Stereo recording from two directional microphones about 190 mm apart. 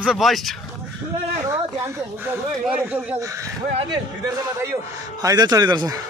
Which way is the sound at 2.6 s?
5° right (ahead or behind).